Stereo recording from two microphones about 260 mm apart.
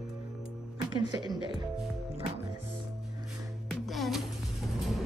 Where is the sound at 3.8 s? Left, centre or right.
Centre.